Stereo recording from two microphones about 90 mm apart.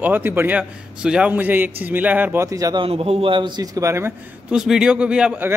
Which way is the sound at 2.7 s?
90° right.